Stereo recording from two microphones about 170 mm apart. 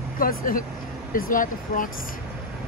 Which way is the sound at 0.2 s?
55° left (ahead or behind).